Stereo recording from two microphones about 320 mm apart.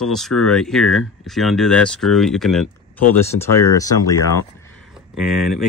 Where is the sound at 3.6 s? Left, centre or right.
Centre.